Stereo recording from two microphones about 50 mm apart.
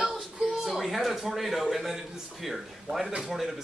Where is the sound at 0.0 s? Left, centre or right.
Centre.